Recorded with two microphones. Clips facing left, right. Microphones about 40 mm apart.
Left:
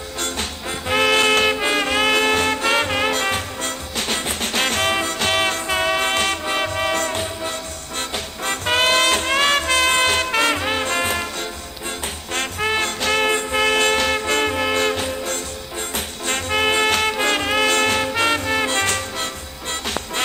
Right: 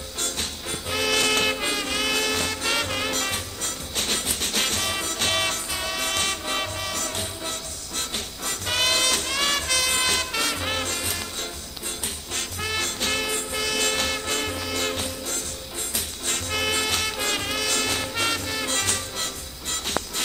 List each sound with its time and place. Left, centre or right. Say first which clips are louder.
0.2 s music: left 5 dB; left
12.4 s music: left 8 dB; left